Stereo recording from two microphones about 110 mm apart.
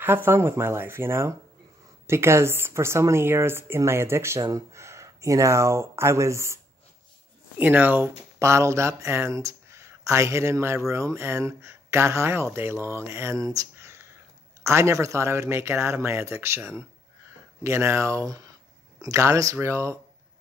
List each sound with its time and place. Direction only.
0.0 s speech: 20° right (ahead or behind)
7.5 s speech: 15° right (ahead or behind)